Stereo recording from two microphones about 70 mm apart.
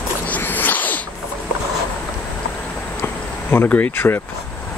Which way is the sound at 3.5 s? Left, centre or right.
Left.